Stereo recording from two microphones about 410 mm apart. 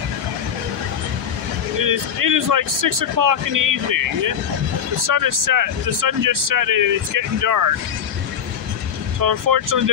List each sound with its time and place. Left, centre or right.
1.8 s speech: right
9.2 s speech: right